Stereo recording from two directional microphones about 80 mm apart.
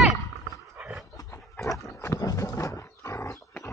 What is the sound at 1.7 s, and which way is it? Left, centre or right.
Wild animals, left.